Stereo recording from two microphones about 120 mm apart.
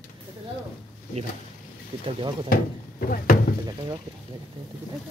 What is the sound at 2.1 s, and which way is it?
Speech, 50° right (ahead or behind).